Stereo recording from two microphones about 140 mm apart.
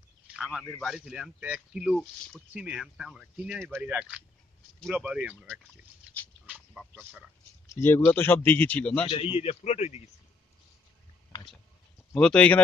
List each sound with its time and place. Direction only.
0.3 s a man's voice: 5° right (ahead or behind)
6.4 s duck: 5° right (ahead or behind)
7.7 s a man's voice: 15° left (ahead or behind)
9.1 s a man's voice: 40° left (ahead or behind)
12.1 s a man's voice: 5° left (ahead or behind)